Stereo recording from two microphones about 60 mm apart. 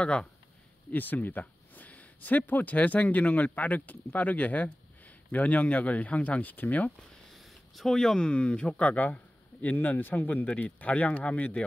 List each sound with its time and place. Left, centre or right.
0.0 s speech: centre
0.9 s speech: left
7.3 s speech: centre; by 11.6 s left